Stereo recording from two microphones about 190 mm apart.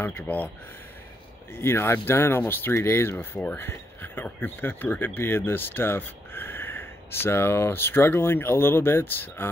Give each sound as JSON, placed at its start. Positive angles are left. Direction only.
{"t": 0.0, "sound": "speech", "side_deg": 10}
{"t": 1.5, "sound": "speech", "side_deg": 10}